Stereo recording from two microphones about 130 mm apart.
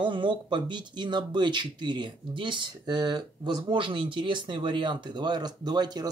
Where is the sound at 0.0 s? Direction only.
35° right (ahead or behind).